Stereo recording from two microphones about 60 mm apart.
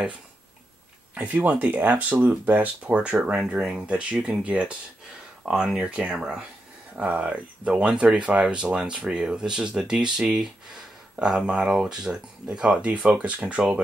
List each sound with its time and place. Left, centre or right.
1.3 s speech: right
6.1 s speech: centre
7.0 s speech: right